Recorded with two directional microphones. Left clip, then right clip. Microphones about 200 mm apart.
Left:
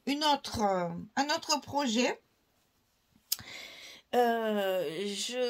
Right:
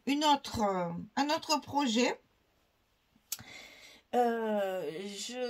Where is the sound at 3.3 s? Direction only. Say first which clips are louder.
Left 6 dB; 45° left (ahead or behind).